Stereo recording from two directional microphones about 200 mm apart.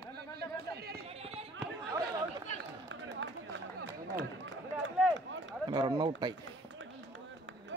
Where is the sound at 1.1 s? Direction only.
30° right (ahead or behind).